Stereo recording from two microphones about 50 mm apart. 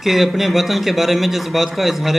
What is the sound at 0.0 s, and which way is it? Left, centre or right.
A man's voice, centre.